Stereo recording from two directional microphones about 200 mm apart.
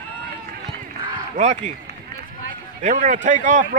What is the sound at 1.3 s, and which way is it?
Speech, 40° right (ahead or behind).